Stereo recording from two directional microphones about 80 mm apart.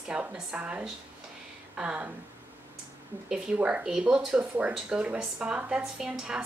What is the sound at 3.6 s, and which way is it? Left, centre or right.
A woman's voice, centre.